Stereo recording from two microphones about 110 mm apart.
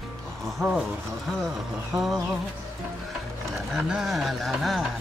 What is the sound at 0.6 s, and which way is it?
Speech, 5° right (ahead or behind).